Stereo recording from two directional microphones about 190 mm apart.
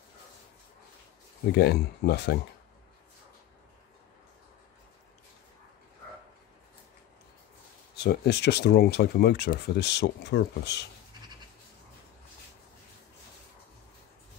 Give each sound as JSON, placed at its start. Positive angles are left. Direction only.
{"t": 1.5, "sound": "speech", "side_deg": 60}
{"t": 7.9, "sound": "speech", "side_deg": 60}